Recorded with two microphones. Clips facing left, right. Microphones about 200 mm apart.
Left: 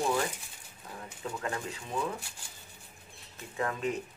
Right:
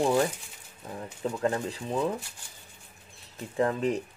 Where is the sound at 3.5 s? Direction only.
35° right (ahead or behind).